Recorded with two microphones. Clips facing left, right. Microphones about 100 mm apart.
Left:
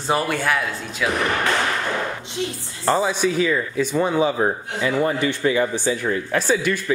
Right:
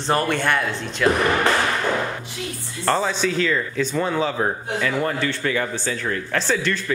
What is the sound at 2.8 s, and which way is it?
Speech, 10° left (ahead or behind).